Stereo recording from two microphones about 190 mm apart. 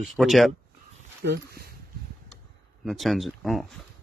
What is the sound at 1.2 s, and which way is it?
Speech, 55° right (ahead or behind).